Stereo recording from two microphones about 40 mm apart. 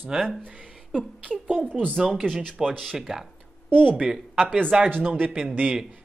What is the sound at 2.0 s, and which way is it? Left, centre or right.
Speech, centre.